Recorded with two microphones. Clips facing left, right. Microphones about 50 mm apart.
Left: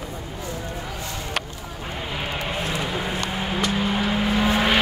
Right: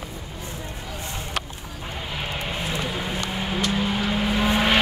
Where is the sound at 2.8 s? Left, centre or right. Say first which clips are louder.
Left 2 dB; centre.